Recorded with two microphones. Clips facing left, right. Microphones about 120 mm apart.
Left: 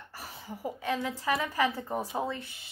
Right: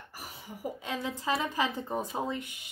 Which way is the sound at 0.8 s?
20° right (ahead or behind).